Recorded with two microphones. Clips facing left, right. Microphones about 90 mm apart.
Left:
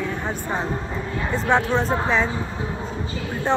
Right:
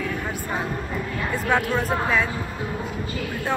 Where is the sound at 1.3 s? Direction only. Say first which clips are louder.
Left 3 dB; 25° left (ahead or behind).